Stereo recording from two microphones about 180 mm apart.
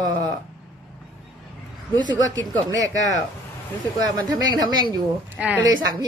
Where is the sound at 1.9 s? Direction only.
25° right (ahead or behind).